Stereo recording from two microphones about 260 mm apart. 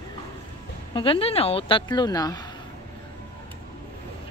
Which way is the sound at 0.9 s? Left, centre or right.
Centre.